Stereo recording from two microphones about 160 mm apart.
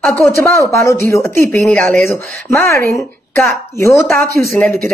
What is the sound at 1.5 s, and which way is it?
Speech, 5° left (ahead or behind).